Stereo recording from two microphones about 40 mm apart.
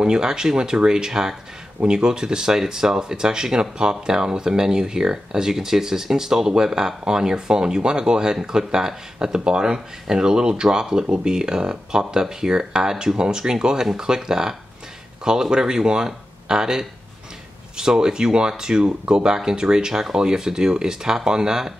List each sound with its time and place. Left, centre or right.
0.0 s speech: centre